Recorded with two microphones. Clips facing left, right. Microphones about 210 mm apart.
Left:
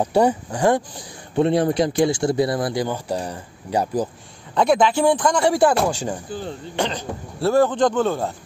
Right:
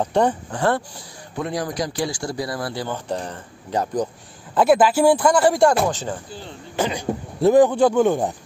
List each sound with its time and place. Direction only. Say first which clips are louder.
0.0 s speech: left 2 dB; 10° left (ahead or behind)
1.3 s speech: left 8 dB; 25° left (ahead or behind); by 4.1 s 10° left (ahead or behind)
4.6 s speech: right 2 dB; 5° right (ahead or behind)
6.8 s speech: right 2 dB; 10° right (ahead or behind)